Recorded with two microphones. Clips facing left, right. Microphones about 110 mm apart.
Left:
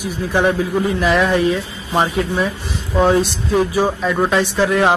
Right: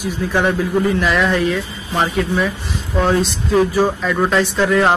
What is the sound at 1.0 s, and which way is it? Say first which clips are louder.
Speech: left 2 dB; 20° left (ahead or behind).